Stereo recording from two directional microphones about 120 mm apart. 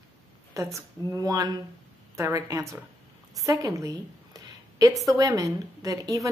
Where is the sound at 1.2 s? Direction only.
30° right (ahead or behind).